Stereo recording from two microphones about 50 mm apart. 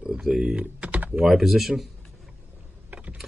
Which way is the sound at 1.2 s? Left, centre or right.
Centre.